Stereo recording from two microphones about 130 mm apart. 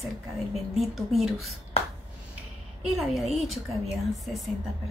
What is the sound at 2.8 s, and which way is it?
A woman's voice, centre (ahead or behind).